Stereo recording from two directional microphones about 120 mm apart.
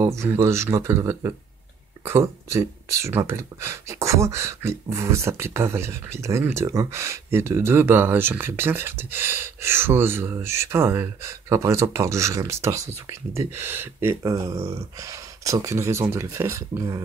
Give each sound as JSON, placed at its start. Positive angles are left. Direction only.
{"t": 0.0, "sound": "speech", "side_deg": -25}